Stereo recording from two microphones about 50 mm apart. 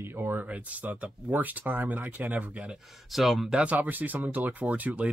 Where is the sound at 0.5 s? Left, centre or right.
Right.